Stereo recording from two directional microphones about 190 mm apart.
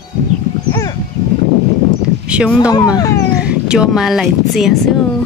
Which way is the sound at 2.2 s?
5° right (ahead or behind).